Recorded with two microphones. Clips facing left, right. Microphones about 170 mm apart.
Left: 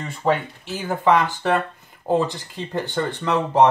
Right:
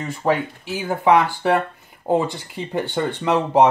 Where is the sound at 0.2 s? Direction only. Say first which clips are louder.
Even; 10° right (ahead or behind).